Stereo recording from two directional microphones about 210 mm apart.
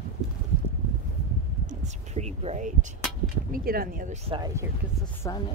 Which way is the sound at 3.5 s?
45° right (ahead or behind).